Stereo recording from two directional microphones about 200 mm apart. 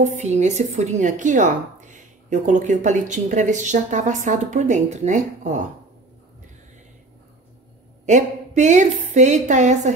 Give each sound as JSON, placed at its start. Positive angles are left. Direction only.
{"t": 0.0, "sound": "a woman's voice", "side_deg": -35}
{"t": 8.0, "sound": "a woman's voice", "side_deg": -35}